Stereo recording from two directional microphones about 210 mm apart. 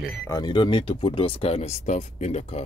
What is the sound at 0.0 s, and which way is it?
Speech, 10° left (ahead or behind).